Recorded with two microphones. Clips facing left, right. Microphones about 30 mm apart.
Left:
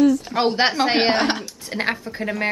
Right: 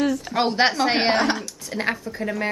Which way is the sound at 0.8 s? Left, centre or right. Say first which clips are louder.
Left 2 dB; centre.